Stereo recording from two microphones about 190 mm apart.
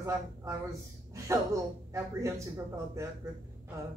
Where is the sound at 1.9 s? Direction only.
15° right (ahead or behind).